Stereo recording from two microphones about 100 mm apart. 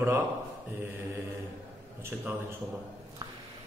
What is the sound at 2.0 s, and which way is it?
Speech, 25° right (ahead or behind).